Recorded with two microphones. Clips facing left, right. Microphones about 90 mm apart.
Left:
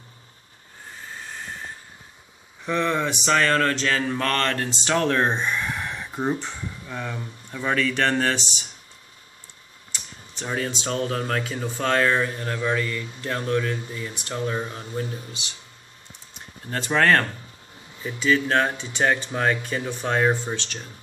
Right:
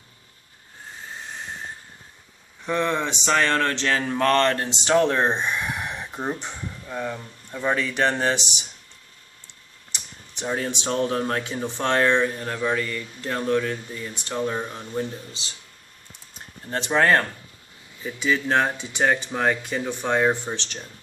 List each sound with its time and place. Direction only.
1.3 s train: 20° right (ahead or behind)
2.7 s mantra: 25° right (ahead or behind)
4.2 s speech: 25° right (ahead or behind)
9.9 s computer keyboard: 15° right (ahead or behind)
10.8 s speech: 15° right (ahead or behind)
11.8 s mantra: 20° right (ahead or behind)
14.4 s speech: centre (ahead or behind)
15.4 s mantra: 30° right (ahead or behind)
16.7 s speech: 20° right (ahead or behind)
20.5 s mantra: 20° right (ahead or behind)